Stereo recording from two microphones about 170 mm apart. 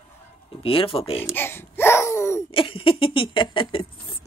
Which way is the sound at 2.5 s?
30° left (ahead or behind).